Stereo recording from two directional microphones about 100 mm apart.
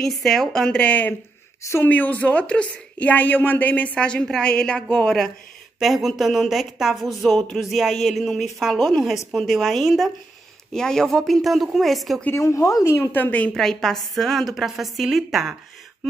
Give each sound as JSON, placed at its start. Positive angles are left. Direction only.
{"t": 0.0, "sound": "a woman's voice", "side_deg": 0}
{"t": 12.4, "sound": "a woman's voice", "side_deg": 30}
{"t": 13.5, "sound": "speech", "side_deg": 5}